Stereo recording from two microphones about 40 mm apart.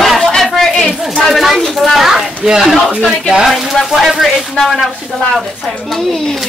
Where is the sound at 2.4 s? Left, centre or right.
Centre.